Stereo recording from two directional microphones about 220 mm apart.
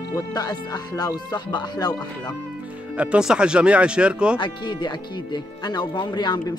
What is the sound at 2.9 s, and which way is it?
Speech, 5° right (ahead or behind).